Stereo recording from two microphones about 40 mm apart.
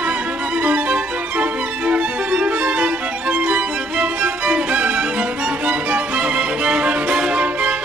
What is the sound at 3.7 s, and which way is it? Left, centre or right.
Music, right.